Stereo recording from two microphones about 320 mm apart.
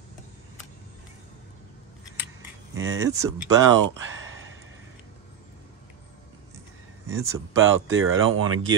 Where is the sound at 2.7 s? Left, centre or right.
Right.